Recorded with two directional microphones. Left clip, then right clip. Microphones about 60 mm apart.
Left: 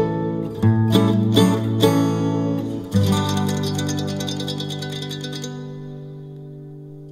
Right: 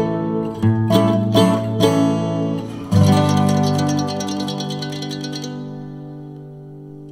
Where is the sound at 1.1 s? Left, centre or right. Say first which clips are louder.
Right 3 dB; right.